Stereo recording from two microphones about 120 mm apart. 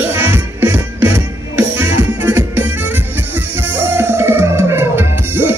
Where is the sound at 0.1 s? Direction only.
20° right (ahead or behind).